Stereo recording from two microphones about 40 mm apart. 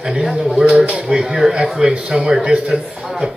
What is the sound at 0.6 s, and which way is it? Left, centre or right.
Speech, right.